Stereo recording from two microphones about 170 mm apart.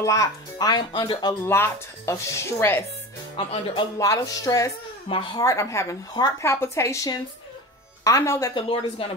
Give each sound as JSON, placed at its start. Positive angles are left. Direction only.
{"t": 0.0, "sound": "a woman's voice", "side_deg": 20}
{"t": 1.4, "sound": "a woman's voice", "side_deg": 15}
{"t": 8.6, "sound": "speech", "side_deg": 30}